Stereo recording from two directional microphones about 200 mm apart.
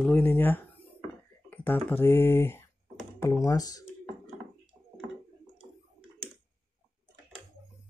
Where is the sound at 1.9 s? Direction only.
10° left (ahead or behind).